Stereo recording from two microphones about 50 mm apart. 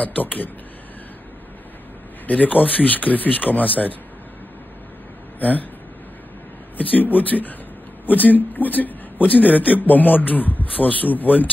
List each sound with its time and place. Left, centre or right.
0.0 s a man's voice: left
2.2 s a man's voice: left
5.4 s a man's voice: left
6.8 s a man's voice: left